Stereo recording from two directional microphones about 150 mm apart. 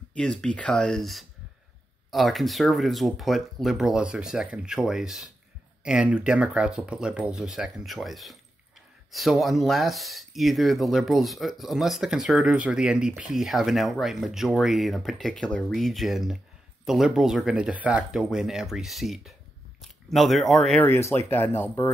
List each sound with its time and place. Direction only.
0.1 s speech: 5° left (ahead or behind)
20.8 s speech: 15° left (ahead or behind)